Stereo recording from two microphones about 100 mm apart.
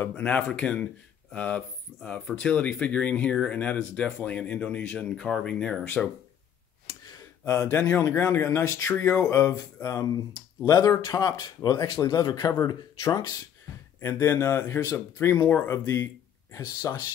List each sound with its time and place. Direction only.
0.0 s speech: 15° left (ahead or behind)
7.4 s speech: 25° left (ahead or behind)
14.0 s speech: 25° left (ahead or behind)
15.8 s speech: 30° left (ahead or behind)